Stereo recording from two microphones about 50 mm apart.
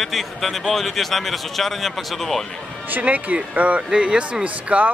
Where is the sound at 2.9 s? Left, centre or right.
Right.